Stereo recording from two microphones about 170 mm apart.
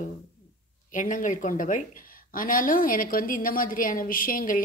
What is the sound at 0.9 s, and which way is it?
A woman's voice, 50° left (ahead or behind).